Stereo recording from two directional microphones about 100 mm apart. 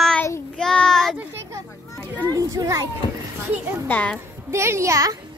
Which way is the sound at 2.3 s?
35° right (ahead or behind).